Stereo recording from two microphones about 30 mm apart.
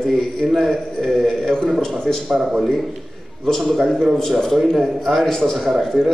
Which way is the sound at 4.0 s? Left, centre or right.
Centre.